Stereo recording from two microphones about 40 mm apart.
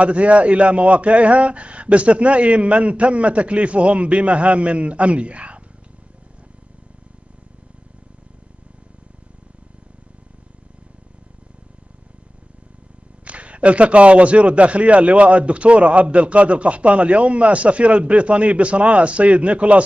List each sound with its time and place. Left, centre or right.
0.0 s a man's voice: right
13.2 s a man's voice: right